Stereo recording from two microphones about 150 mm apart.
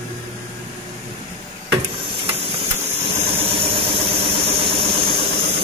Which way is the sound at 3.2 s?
40° right (ahead or behind).